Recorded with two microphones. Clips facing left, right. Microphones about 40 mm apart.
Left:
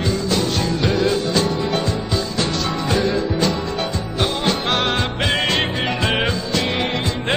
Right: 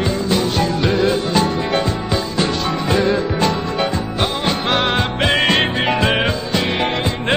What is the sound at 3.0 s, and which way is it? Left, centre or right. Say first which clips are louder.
Music: right 2 dB; right.